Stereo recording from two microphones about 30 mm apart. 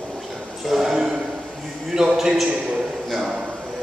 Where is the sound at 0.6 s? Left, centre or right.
Centre.